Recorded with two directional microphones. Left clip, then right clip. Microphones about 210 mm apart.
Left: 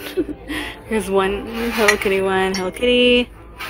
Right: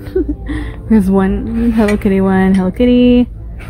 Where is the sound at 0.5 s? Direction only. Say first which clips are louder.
Right 6 dB; 15° right (ahead or behind).